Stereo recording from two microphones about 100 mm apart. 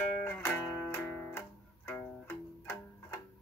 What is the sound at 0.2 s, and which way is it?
Music, 25° left (ahead or behind).